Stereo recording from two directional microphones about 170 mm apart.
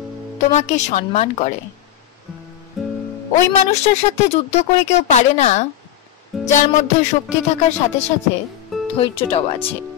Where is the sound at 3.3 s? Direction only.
40° left (ahead or behind).